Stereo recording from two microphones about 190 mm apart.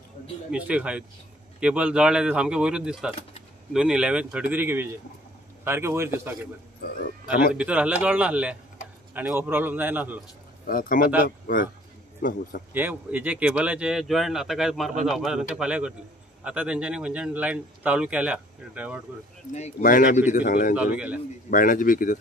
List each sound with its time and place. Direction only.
0.5 s speech: 5° right (ahead or behind)
7.5 s speech: 5° right (ahead or behind)
10.7 s a man's voice: 45° left (ahead or behind)
12.7 s speech: 10° right (ahead or behind)
19.5 s a man's voice: 40° left (ahead or behind)
20.7 s speech: 5° right (ahead or behind)
21.5 s a man's voice: 45° left (ahead or behind)